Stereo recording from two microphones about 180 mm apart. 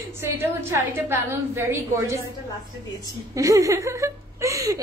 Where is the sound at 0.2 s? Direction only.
15° right (ahead or behind).